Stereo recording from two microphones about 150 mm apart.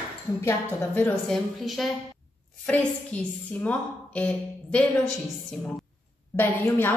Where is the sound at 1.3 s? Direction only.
Centre (ahead or behind).